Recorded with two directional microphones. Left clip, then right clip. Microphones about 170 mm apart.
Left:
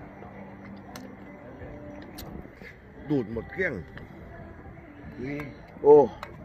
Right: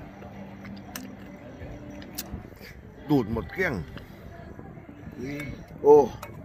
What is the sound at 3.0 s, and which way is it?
Speech, 55° right (ahead or behind).